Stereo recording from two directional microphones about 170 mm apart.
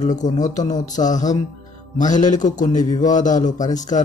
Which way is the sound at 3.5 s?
20° left (ahead or behind).